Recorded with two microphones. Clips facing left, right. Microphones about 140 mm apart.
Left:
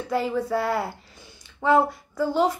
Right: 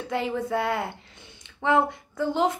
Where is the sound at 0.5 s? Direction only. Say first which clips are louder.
Left 2 dB; 20° right (ahead or behind).